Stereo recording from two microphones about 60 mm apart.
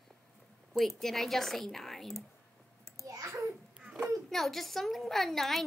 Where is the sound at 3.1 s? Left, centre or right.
Right.